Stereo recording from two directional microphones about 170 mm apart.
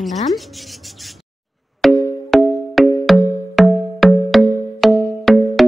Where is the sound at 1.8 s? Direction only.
Centre (ahead or behind).